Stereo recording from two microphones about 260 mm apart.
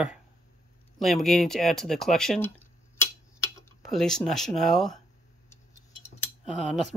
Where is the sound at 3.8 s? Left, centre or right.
Centre.